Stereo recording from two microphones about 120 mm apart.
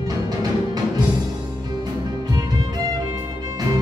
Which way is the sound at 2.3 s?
35° right (ahead or behind).